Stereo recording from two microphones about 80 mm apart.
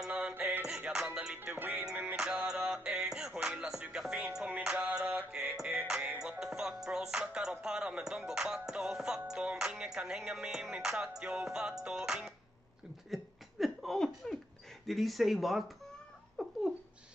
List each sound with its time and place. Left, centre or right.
0.1 s music: centre
1.6 s music: right
2.1 s music: centre
4.9 s mantra: centre
5.6 s music: centre
13.1 s a sound: centre
14.9 s speech: centre
16.4 s a sound: centre